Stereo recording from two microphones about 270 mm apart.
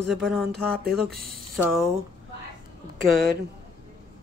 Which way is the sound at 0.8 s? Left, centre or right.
Right.